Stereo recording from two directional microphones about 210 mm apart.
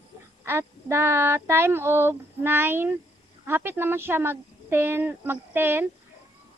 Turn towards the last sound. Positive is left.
turn(degrees=-10)  # may be behind; listen again after turning